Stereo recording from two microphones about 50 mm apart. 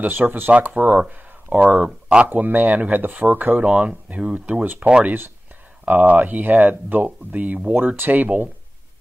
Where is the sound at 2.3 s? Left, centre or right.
Right.